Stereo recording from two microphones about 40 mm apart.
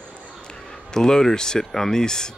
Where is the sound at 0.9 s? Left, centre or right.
Centre.